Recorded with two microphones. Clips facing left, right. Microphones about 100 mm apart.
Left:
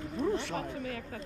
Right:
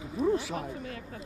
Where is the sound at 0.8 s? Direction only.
30° right (ahead or behind).